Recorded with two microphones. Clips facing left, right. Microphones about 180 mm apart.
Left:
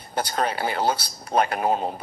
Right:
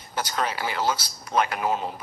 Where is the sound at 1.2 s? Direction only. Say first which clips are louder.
Left 3 dB; 40° left (ahead or behind).